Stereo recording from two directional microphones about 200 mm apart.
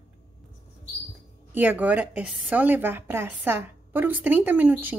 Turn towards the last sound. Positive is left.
turn(degrees=-10)  # may be behind; listen again after turning